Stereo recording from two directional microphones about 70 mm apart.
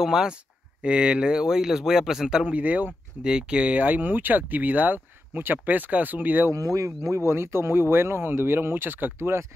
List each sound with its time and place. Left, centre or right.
0.0 s speech: centre; by 6.5 s right
6.5 s speech: right